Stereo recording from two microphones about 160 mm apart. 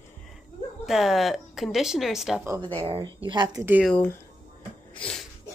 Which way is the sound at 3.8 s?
10° left (ahead or behind).